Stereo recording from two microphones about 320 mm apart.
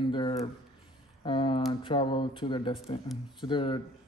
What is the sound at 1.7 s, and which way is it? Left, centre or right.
Speech, centre.